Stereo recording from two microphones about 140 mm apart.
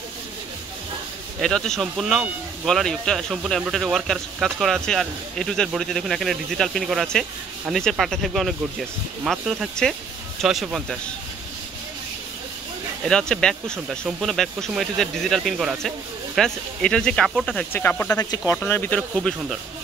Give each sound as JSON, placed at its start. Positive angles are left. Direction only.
{"t": 1.4, "sound": "speech", "side_deg": 5}
{"t": 13.0, "sound": "speech", "side_deg": 5}
{"t": 18.1, "sound": "speech", "side_deg": 25}
{"t": 18.5, "sound": "speech", "side_deg": 15}
{"t": 19.1, "sound": "speech", "side_deg": 0}